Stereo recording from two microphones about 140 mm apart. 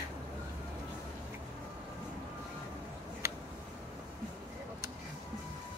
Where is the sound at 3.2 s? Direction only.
20° right (ahead or behind).